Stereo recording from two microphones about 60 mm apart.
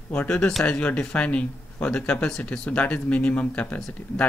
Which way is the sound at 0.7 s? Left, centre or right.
Left.